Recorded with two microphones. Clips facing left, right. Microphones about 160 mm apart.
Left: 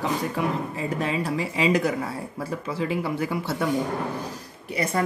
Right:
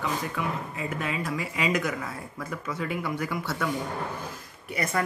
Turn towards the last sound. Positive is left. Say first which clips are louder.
# left 3 dB
turn(degrees=30)  # may be behind; listen again after turning